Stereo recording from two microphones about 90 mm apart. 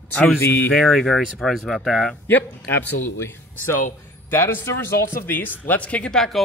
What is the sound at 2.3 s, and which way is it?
Speech, 20° left (ahead or behind).